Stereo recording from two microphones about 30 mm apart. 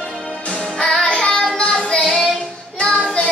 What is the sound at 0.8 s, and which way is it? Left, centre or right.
Music, left.